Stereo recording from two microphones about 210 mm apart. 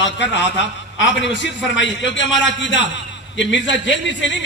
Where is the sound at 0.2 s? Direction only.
55° left (ahead or behind).